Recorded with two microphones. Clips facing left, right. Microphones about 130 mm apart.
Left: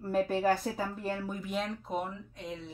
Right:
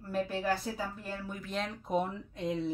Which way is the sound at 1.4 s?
10° left (ahead or behind).